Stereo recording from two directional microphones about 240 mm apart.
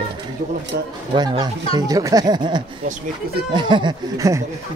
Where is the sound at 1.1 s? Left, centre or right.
Centre.